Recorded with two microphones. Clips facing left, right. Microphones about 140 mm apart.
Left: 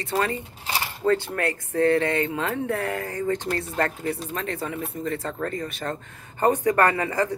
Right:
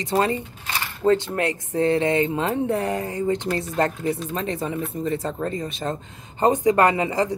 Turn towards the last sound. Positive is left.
turn(degrees=-15)  # may be behind; listen again after turning